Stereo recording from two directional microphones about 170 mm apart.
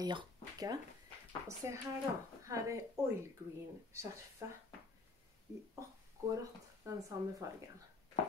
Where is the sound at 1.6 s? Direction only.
15° right (ahead or behind).